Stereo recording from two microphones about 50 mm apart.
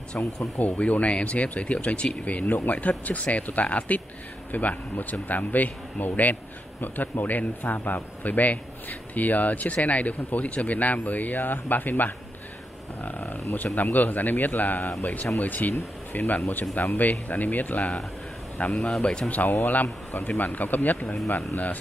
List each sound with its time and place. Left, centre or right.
0.2 s a man's voice: left
18.9 s speech: centre
19.5 s a man's voice: left